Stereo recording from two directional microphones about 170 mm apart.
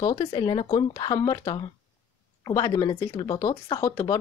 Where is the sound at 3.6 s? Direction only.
20° left (ahead or behind).